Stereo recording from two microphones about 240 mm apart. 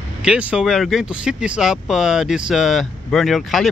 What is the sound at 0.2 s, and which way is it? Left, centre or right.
Speech, centre.